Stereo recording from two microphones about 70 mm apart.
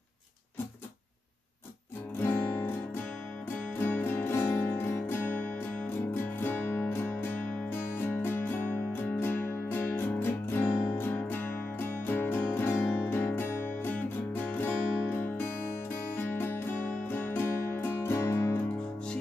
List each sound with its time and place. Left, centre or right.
2.2 s music: left
3.8 s music: left